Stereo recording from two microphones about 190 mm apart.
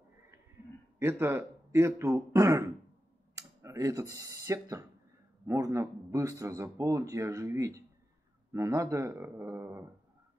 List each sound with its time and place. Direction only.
0.9 s a man's voice: 15° right (ahead or behind)